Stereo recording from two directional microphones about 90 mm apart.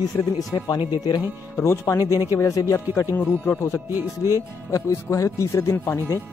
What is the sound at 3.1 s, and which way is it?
Speech, 20° left (ahead or behind).